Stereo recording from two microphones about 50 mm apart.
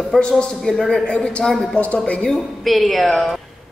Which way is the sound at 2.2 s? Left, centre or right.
Centre.